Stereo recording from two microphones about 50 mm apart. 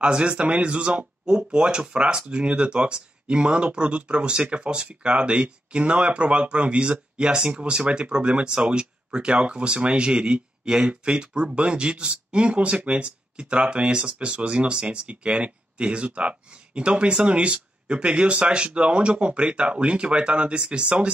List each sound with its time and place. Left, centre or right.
0.0 s speech: centre